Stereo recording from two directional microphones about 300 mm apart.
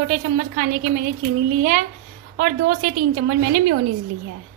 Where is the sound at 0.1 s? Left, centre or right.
Right.